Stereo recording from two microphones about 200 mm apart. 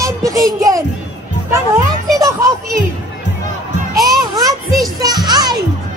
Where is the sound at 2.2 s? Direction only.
15° right (ahead or behind).